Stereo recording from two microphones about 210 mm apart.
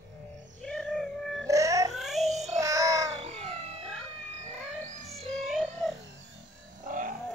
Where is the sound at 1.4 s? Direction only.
15° right (ahead or behind).